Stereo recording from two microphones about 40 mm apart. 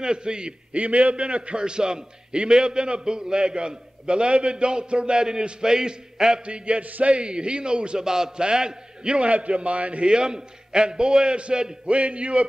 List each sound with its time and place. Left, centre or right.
0.0 s a man's voice: right
0.7 s a man's voice: right; by 6.4 s centre
6.4 s a sound: right
7.1 s a man's voice: right